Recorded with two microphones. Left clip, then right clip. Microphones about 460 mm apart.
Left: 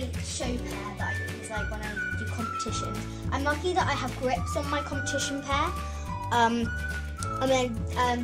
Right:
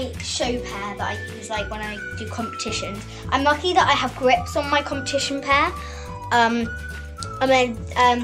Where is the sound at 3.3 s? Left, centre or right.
Right.